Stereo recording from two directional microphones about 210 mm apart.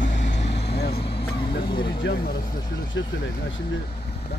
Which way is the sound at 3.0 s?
60° left (ahead or behind).